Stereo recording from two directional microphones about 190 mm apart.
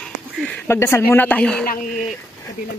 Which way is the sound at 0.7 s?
15° left (ahead or behind).